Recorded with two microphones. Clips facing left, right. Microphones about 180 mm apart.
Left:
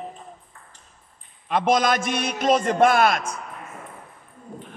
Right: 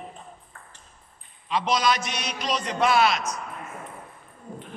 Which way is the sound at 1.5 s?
50° left (ahead or behind).